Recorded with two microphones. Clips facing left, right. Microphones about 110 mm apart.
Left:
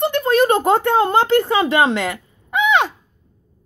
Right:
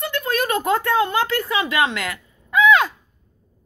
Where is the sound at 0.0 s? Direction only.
30° left (ahead or behind).